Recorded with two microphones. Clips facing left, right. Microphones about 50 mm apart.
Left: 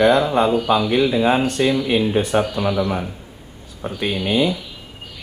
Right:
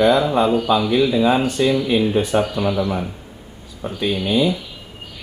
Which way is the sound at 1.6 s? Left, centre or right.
Left.